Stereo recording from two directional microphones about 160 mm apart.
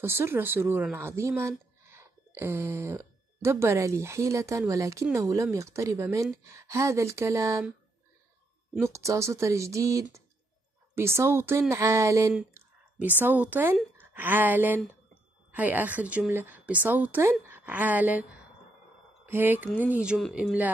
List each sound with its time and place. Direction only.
0.0 s speech: 15° right (ahead or behind)
8.7 s a woman's voice: 20° right (ahead or behind)
12.4 s a sound: 10° right (ahead or behind)
13.2 s a woman's voice: 10° right (ahead or behind)
19.2 s a woman's voice: 15° right (ahead or behind)